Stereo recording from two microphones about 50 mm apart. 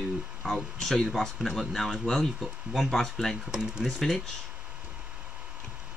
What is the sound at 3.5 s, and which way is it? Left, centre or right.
Speech, centre.